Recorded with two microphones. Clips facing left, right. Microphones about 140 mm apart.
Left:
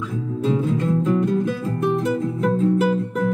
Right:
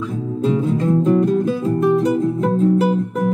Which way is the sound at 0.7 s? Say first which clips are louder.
Right 5 dB; 25° right (ahead or behind).